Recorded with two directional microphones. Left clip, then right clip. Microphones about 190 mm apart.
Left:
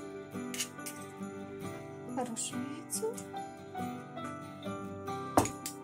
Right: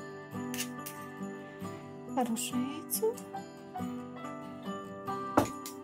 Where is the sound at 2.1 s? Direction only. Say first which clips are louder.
Right 5 dB; 35° right (ahead or behind).